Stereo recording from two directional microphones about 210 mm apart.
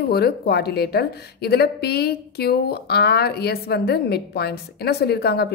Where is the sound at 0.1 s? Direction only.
50° left (ahead or behind).